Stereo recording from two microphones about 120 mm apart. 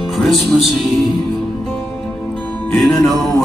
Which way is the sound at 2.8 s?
Centre (ahead or behind).